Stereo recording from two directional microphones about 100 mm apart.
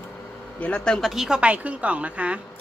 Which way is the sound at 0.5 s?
15° left (ahead or behind).